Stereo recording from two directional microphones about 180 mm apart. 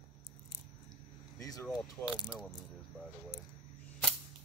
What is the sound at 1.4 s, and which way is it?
Speech, 20° left (ahead or behind).